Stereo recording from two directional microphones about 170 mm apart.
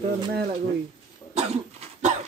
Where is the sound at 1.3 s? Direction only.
35° right (ahead or behind).